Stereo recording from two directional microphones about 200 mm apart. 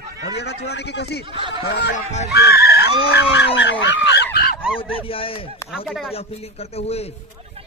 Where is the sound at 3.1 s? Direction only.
60° left (ahead or behind).